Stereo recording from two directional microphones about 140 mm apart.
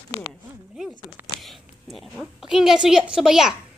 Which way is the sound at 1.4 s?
Centre (ahead or behind).